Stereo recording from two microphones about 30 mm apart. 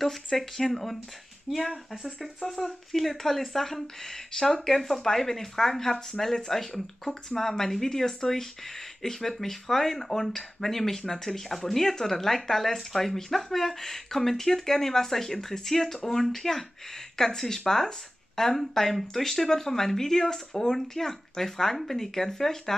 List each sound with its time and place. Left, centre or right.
0.4 s speech: centre
1.5 s speech: centre
2.9 s speech: centre